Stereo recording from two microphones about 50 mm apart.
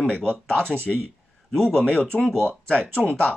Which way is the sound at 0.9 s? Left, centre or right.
Centre.